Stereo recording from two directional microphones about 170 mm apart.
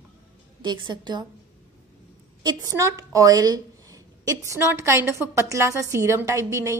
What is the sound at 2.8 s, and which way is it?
A woman's voice, 20° right (ahead or behind).